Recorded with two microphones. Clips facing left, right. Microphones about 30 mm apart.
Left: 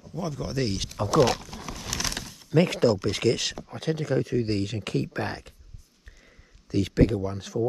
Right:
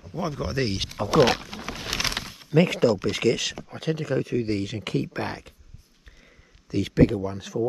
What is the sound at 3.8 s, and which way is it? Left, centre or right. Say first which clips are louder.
Speech: even; right.